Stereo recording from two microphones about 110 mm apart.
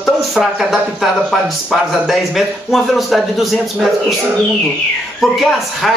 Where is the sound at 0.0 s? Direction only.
5° right (ahead or behind).